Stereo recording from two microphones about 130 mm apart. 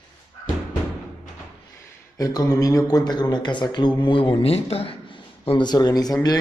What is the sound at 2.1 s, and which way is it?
A man's voice, 30° left (ahead or behind).